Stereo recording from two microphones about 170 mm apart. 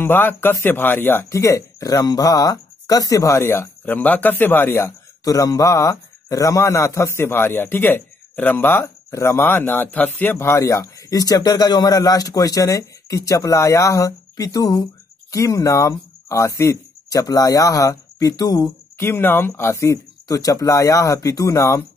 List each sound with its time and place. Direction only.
0.0 s a man's voice: 10° left (ahead or behind)